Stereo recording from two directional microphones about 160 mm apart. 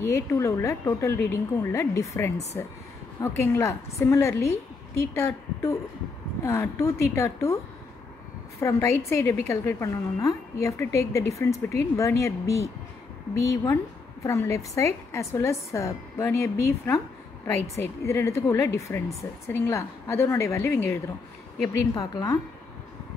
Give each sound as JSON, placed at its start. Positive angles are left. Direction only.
{"t": 0.0, "sound": "a woman's voice", "side_deg": 15}
{"t": 8.5, "sound": "a woman's voice", "side_deg": 20}